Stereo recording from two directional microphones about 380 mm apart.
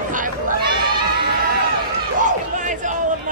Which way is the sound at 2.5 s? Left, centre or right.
Centre.